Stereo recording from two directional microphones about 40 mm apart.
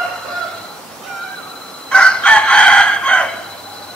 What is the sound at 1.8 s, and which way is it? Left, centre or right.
Crowing, left.